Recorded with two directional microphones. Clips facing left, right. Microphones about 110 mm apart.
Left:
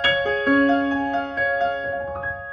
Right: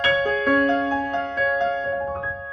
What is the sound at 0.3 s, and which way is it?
Music, 30° left (ahead or behind).